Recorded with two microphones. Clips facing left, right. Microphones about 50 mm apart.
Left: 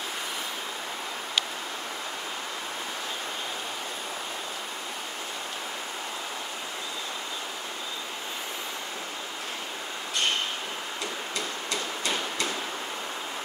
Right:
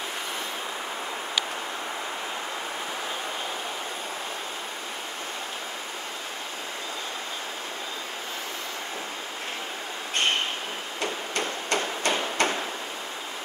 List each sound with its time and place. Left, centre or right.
11.0 s hammer: right